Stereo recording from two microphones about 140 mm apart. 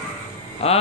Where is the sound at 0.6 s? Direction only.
45° left (ahead or behind).